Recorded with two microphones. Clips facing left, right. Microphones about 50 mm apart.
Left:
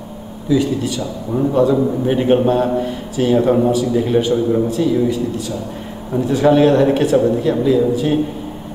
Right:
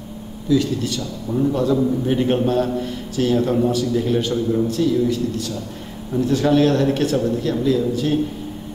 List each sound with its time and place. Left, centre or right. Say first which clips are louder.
0.5 s a man's voice: left 3 dB; centre